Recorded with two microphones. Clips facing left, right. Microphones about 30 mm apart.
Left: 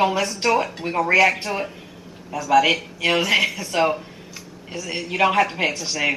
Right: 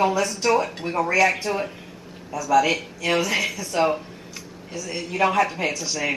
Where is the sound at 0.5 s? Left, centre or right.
Centre.